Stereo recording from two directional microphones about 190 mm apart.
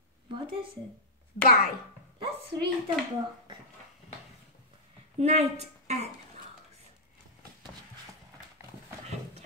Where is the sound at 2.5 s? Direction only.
20° right (ahead or behind).